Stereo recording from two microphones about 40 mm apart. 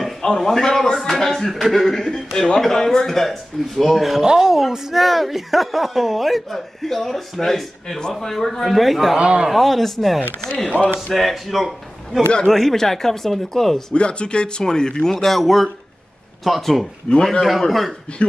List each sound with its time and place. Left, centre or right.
0.4 s a man's voice: centre
4.2 s speech: centre
9.1 s a man's voice: right
9.5 s speech: centre
10.6 s a man's voice: left
11.1 s speech: centre
12.5 s a man's voice: centre
13.9 s a man's voice: left
15.2 s speech: centre
17.1 s a man's voice: centre
17.6 s speech: centre